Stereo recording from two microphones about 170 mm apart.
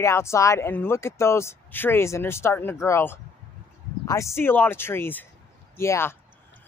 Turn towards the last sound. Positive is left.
turn(degrees=15)  # may be behind; listen again after turning